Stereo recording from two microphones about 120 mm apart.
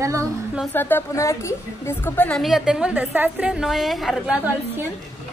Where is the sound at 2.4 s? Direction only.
5° right (ahead or behind).